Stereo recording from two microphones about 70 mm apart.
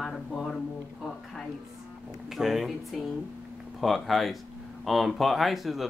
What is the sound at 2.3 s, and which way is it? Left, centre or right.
Speech, centre.